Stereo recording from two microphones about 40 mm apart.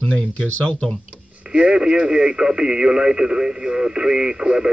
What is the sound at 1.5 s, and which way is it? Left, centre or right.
Speech, right.